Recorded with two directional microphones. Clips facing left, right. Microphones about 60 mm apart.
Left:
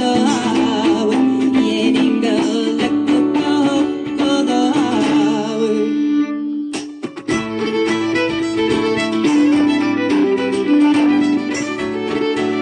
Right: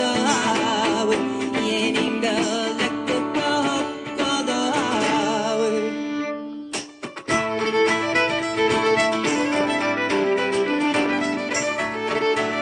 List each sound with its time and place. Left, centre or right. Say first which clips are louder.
0.0 s music: left 5 dB; right
7.7 s music: left 3 dB; right